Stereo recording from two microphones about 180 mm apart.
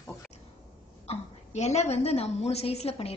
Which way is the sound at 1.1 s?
40° left (ahead or behind).